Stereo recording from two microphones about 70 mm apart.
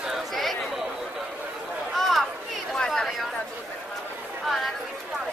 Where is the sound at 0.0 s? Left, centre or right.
Centre.